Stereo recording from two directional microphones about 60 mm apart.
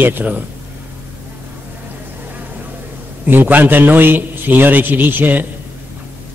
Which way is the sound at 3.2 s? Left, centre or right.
Right.